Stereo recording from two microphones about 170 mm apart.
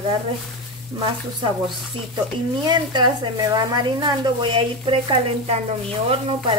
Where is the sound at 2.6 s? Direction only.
25° right (ahead or behind).